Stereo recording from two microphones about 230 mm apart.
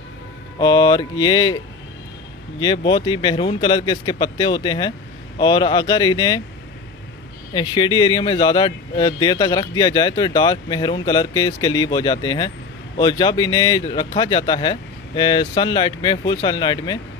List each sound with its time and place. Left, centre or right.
0.6 s speech: centre
2.6 s speech: left
7.5 s speech: centre